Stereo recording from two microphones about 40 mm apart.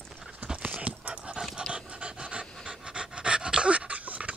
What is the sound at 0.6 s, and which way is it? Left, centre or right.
Dog, right.